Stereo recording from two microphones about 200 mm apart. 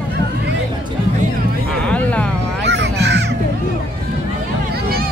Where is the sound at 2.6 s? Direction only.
60° right (ahead or behind).